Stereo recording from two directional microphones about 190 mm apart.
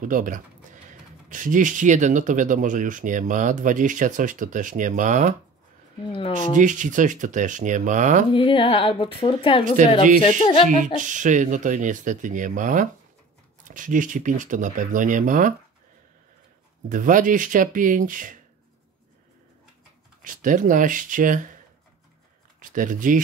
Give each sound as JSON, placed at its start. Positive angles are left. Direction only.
{"t": 0.0, "sound": "speech", "side_deg": -45}
{"t": 6.5, "sound": "speech", "side_deg": -40}
{"t": 8.3, "sound": "speech", "side_deg": 25}
{"t": 11.0, "sound": "speech", "side_deg": -40}
{"t": 16.9, "sound": "speech", "side_deg": -45}
{"t": 20.2, "sound": "speech", "side_deg": -45}
{"t": 22.6, "sound": "speech", "side_deg": -45}